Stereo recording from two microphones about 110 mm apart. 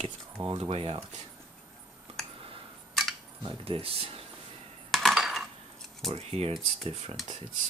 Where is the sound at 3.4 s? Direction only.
50° right (ahead or behind).